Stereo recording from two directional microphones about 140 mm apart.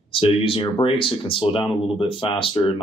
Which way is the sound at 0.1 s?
40° left (ahead or behind).